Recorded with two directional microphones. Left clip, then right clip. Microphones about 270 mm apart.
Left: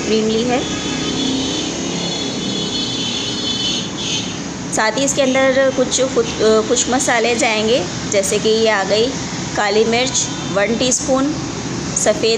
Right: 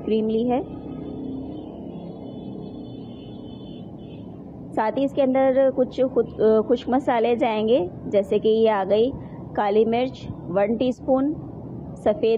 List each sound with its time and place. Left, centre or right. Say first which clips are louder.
0.1 s a woman's voice: left 5 dB; centre
4.7 s a woman's voice: left 6 dB; right
12.0 s a woman's voice: left 5 dB; centre